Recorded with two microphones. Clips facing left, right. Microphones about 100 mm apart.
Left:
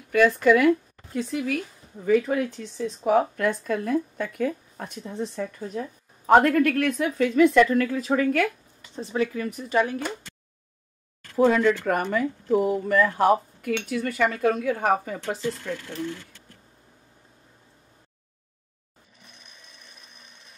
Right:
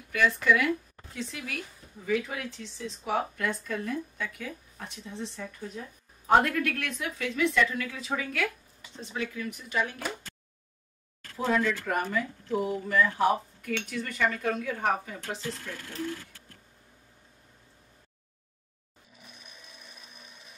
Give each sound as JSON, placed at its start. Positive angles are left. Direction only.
{"t": 0.1, "sound": "speech", "side_deg": 50}
{"t": 11.3, "sound": "speech", "side_deg": 50}
{"t": 19.2, "sound": "tools", "side_deg": 0}